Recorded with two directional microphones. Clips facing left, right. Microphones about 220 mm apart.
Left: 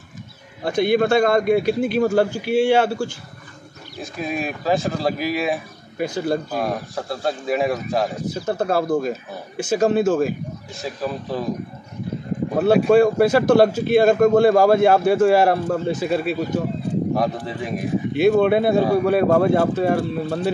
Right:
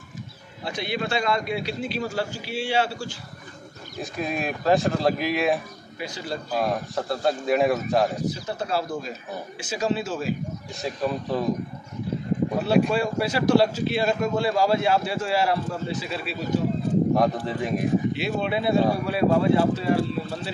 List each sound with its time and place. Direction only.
0.7 s a man's voice: 50° left (ahead or behind)
4.0 s speech: centre (ahead or behind)
5.9 s a man's voice: 50° left (ahead or behind)
6.5 s speech: centre (ahead or behind)
8.5 s a man's voice: 50° left (ahead or behind)
10.8 s speech: centre (ahead or behind)
12.5 s a man's voice: 55° left (ahead or behind)
17.1 s speech: centre (ahead or behind)
18.1 s a man's voice: 50° left (ahead or behind)